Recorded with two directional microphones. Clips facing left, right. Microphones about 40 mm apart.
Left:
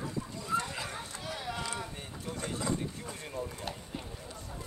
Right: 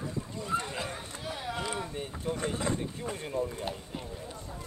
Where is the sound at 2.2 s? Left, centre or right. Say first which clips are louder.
Right 4 dB; right.